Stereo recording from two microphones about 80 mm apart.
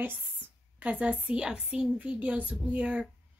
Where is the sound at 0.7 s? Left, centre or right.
Centre.